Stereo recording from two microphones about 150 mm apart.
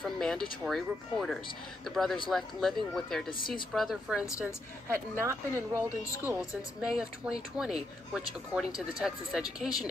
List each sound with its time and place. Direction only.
0.0 s speech: 5° left (ahead or behind)
4.8 s speech: 20° right (ahead or behind)
6.2 s speech: 5° right (ahead or behind)